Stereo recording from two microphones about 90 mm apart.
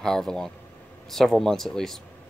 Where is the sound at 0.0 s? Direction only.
5° left (ahead or behind).